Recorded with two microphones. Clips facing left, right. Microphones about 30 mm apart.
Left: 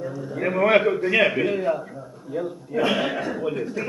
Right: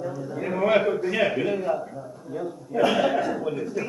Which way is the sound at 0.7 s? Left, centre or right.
Left.